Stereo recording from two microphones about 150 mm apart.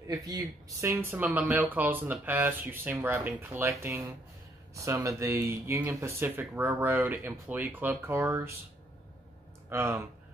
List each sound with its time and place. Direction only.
0.0 s speech: 25° right (ahead or behind)
9.7 s speech: 20° right (ahead or behind)